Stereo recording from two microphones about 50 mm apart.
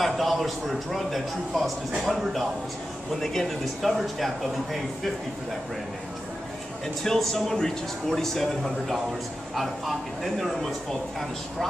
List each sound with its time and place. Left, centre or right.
0.0 s a man's voice: centre
3.2 s a man's voice: centre
7.0 s a man's voice: centre